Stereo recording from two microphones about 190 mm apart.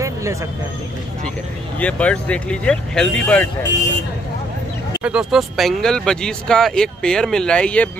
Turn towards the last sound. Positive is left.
turn(degrees=5)  # may be behind; listen again after turning